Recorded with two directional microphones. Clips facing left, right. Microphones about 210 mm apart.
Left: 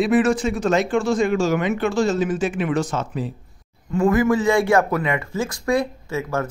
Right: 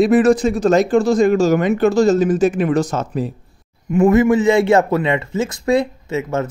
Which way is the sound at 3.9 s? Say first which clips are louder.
Right 5 dB; 20° right (ahead or behind).